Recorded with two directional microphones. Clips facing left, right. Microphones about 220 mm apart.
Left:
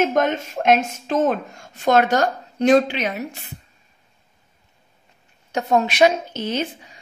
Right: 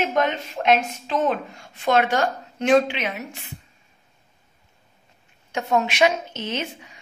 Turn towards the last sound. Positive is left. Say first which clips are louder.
# left 4 dB
turn(degrees=35)  # may be behind; listen again after turning